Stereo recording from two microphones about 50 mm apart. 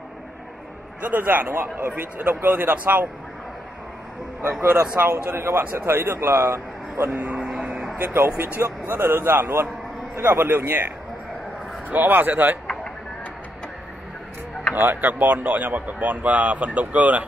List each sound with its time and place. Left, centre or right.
1.0 s speech: right
4.4 s a man's voice: right
7.1 s speech: right
7.3 s music: centre
8.0 s a man's voice: right
8.6 s a man's voice: right
11.9 s speech: right
14.8 s speech: right